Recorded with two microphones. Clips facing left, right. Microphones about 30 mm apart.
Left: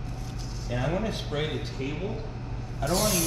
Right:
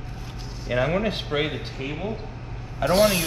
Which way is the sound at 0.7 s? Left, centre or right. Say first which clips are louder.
Right 6 dB; right.